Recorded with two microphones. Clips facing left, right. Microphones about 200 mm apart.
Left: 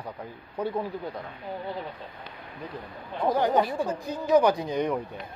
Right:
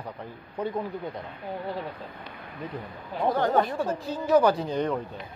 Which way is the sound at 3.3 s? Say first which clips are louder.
Left 1 dB; 15° left (ahead or behind).